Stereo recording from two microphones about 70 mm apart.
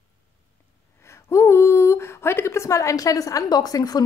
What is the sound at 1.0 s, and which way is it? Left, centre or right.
A woman's voice, left.